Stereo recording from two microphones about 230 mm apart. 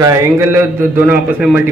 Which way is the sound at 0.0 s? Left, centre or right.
Centre.